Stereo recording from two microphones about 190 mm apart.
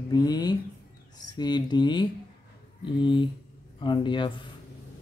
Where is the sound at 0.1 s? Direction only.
20° left (ahead or behind).